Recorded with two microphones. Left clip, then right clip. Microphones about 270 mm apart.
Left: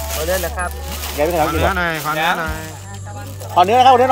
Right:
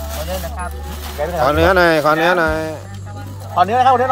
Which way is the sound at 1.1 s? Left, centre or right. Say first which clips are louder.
Left 4 dB; left.